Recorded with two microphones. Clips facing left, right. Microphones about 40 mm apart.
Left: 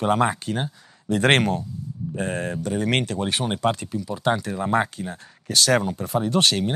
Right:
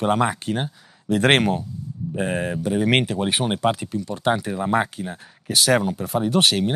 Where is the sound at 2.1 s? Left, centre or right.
Centre.